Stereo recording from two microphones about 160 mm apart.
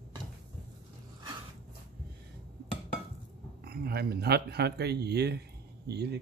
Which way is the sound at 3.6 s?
80° right.